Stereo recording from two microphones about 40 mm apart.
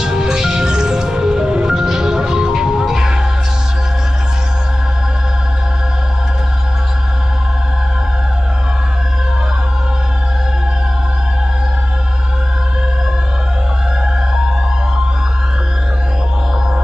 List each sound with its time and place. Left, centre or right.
0.0 s music: centre